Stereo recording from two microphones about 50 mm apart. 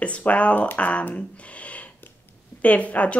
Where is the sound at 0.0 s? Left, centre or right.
Left.